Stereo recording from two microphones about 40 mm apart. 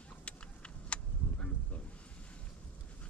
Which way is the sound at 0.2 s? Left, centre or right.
Left.